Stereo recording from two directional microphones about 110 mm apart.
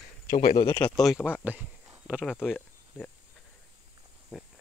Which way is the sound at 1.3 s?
15° right (ahead or behind).